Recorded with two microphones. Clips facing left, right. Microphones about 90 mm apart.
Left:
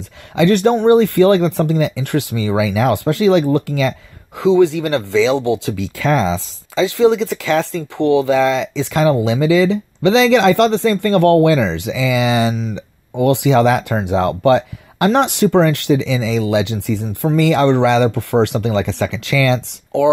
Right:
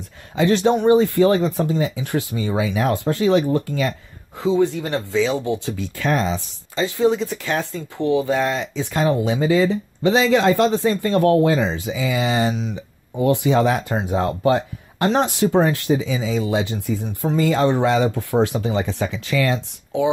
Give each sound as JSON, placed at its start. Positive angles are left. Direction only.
{"t": 0.4, "sound": "speech", "side_deg": 60}
{"t": 6.8, "sound": "speech", "side_deg": 90}
{"t": 12.7, "sound": "speech", "side_deg": 75}
{"t": 14.0, "sound": "speech", "side_deg": 75}